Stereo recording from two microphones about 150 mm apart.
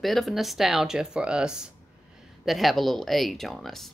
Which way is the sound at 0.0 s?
Centre (ahead or behind).